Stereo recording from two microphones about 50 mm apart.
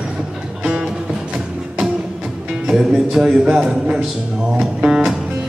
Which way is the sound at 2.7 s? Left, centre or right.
Centre.